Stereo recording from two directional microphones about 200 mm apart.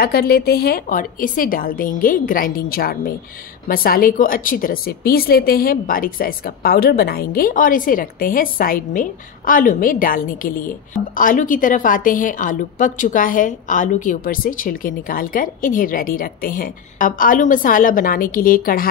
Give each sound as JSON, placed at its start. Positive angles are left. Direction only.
{"t": 0.0, "sound": "a woman's voice", "side_deg": 50}